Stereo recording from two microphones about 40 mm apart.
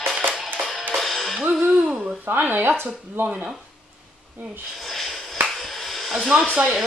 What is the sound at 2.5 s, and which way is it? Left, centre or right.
Speech, right.